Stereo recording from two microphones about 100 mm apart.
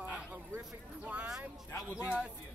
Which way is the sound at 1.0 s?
15° right (ahead or behind).